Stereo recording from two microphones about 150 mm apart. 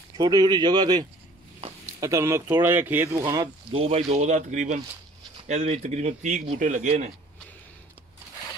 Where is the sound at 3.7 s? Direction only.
40° right (ahead or behind).